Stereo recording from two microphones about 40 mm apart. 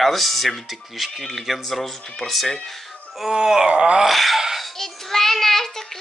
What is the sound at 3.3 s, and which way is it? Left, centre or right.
Groan, centre.